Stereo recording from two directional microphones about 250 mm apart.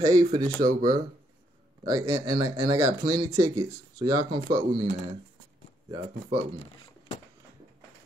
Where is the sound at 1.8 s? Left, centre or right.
Centre.